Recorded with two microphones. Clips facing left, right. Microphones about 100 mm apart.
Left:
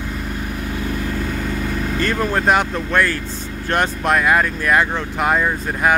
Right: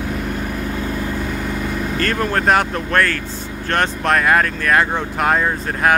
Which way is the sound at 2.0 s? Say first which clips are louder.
Even; 5° left (ahead or behind).